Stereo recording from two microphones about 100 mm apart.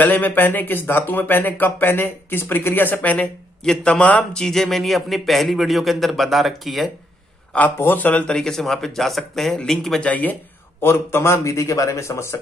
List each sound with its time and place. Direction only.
0.0 s speech: 20° left (ahead or behind); by 6.9 s centre (ahead or behind)
7.5 s speech: 20° left (ahead or behind)
10.8 s a man's voice: 25° left (ahead or behind)